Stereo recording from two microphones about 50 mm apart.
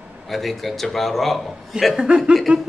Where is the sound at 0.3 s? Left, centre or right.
Centre.